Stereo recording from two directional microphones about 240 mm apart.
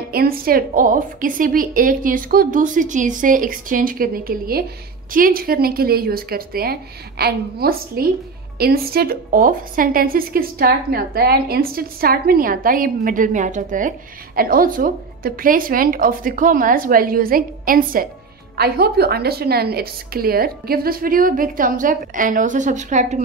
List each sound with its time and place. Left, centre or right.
0.1 s a woman's voice: right